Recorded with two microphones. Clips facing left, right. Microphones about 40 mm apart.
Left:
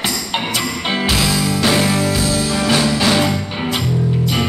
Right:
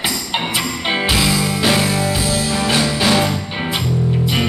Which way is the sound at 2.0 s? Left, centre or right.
Centre.